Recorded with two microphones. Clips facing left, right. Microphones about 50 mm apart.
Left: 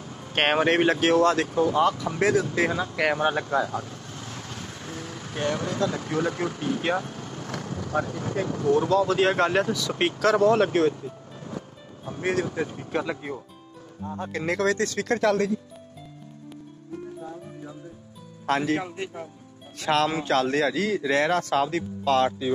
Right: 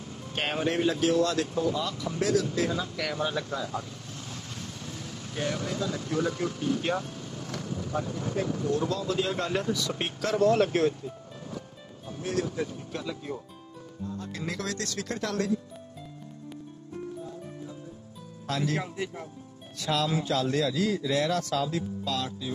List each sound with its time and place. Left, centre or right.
0.3 s speech: left
0.9 s a man's voice: left
4.6 s vehicle: left
5.7 s speech: left
8.7 s speech: left
10.5 s a man's voice: left
12.1 s speech: left
14.1 s speech: left
14.8 s speech: left
18.5 s a man's voice: left
19.8 s a man's voice: left
21.6 s a man's voice: left